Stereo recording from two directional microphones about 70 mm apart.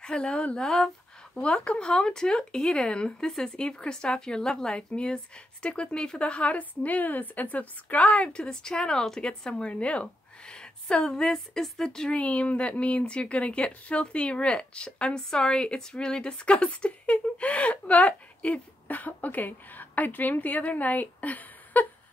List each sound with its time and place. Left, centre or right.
0.0 s a woman's voice: centre